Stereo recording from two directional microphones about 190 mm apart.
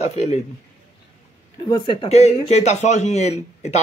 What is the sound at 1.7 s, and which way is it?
Speech, 25° left (ahead or behind).